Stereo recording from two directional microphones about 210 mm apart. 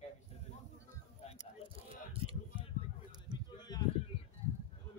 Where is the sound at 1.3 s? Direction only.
25° right (ahead or behind).